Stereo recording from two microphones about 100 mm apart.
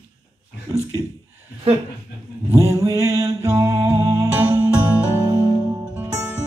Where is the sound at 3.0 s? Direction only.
30° right (ahead or behind).